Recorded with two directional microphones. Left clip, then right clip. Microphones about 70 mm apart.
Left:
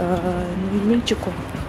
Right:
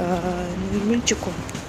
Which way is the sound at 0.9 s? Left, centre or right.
Left.